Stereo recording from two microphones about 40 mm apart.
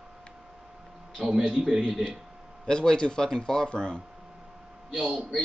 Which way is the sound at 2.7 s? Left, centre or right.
Left.